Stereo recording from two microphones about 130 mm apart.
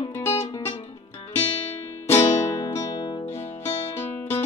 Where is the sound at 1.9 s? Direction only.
20° left (ahead or behind).